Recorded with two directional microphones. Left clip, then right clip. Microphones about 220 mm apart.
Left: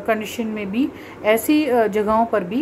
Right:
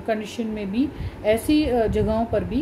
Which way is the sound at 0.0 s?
Centre (ahead or behind).